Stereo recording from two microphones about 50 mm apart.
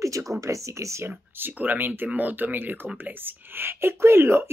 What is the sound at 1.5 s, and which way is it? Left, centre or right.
Speech, right.